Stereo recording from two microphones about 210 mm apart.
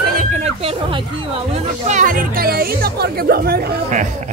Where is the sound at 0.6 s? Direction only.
30° right (ahead or behind); by 3.7 s 45° right (ahead or behind).